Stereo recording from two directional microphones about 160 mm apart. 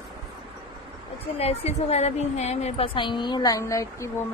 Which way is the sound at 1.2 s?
40° left (ahead or behind).